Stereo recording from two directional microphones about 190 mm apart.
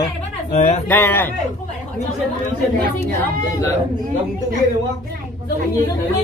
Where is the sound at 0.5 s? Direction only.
35° left (ahead or behind).